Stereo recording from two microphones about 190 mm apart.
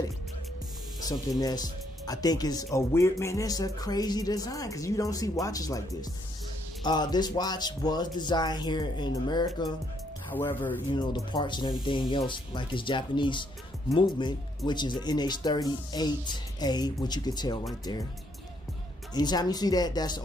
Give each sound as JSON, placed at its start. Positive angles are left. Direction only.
{"t": 1.4, "sound": "speech", "side_deg": 20}
{"t": 10.3, "sound": "speech", "side_deg": 10}
{"t": 10.9, "sound": "speech", "side_deg": 20}
{"t": 19.1, "sound": "speech", "side_deg": 20}